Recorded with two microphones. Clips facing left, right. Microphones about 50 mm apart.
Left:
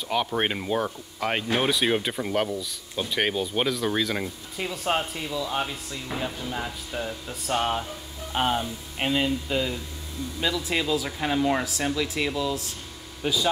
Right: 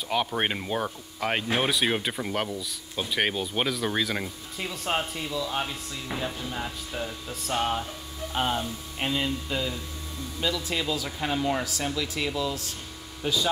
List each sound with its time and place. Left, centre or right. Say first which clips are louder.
0.1 s speech: left 1 dB; centre
10.8 s speech: left 3 dB; centre